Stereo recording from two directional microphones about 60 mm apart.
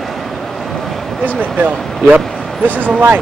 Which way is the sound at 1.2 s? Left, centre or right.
Right.